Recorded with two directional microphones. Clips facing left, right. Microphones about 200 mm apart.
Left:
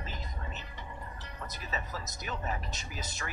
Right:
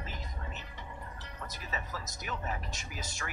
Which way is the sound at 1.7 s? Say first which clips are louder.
Left 2 dB; 25° left (ahead or behind).